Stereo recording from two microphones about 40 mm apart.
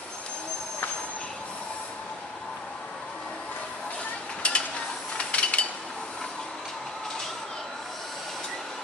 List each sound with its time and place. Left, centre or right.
4.4 s stir: left
5.1 s ratchet: left